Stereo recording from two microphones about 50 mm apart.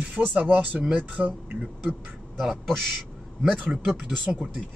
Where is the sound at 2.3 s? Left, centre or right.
Centre.